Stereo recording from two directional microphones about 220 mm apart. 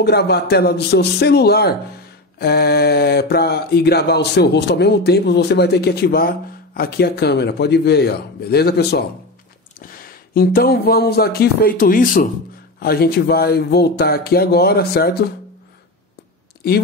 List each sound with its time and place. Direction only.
0.0 s speech: 50° left (ahead or behind)